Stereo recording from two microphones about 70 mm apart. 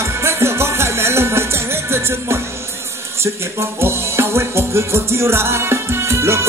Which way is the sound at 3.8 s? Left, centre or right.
Right.